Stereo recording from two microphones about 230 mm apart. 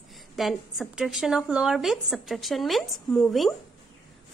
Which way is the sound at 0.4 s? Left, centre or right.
Centre.